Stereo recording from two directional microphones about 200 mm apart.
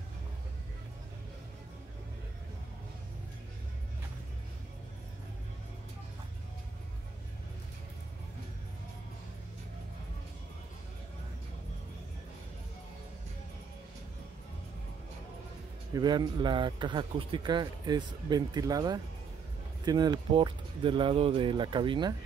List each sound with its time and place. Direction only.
15.9 s speech: 20° right (ahead or behind)